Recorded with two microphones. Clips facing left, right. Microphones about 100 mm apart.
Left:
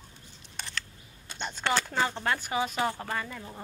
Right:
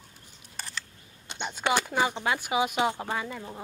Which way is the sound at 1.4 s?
10° right (ahead or behind).